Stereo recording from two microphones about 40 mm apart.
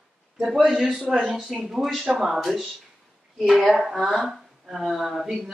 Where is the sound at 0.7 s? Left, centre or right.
Centre.